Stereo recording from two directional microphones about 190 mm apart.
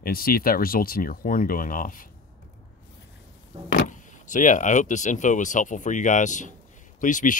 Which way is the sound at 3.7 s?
40° left (ahead or behind).